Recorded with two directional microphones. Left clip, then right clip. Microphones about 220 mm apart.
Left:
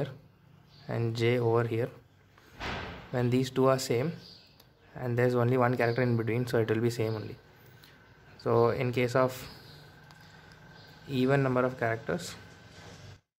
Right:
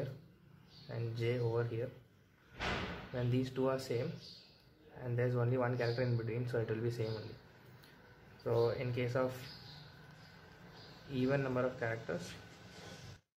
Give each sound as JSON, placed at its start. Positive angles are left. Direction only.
{"t": 0.8, "sound": "speech", "side_deg": 35}
{"t": 3.2, "sound": "speech", "side_deg": 35}
{"t": 8.5, "sound": "speech", "side_deg": 35}
{"t": 11.1, "sound": "speech", "side_deg": 30}